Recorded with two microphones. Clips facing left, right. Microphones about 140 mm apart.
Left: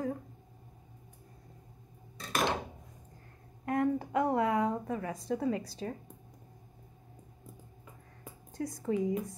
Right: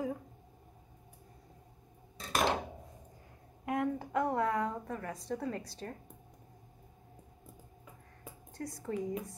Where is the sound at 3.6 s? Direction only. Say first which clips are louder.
Left 4 dB; 5° right (ahead or behind).